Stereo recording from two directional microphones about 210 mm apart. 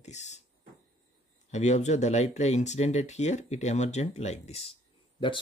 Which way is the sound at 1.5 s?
35° left (ahead or behind).